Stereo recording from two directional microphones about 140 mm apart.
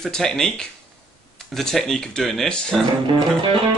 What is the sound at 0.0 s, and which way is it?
Speech, 5° left (ahead or behind).